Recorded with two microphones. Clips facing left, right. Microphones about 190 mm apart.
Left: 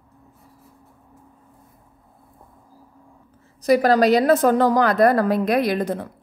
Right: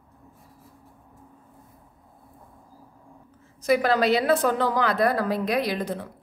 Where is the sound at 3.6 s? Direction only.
40° left (ahead or behind).